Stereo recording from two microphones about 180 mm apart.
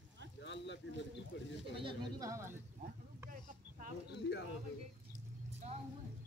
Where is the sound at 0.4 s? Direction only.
80° left.